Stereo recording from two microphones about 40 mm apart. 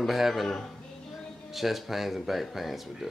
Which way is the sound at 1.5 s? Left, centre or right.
Centre.